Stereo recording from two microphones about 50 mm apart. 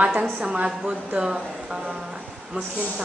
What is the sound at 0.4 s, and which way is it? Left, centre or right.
Speech, right.